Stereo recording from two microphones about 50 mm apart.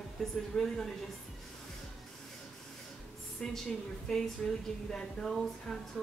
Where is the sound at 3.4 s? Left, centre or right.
Centre.